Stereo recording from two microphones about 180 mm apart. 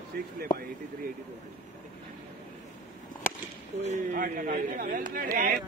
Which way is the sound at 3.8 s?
45° right (ahead or behind).